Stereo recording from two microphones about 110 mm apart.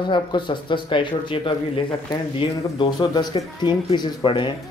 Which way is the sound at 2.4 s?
45° left (ahead or behind).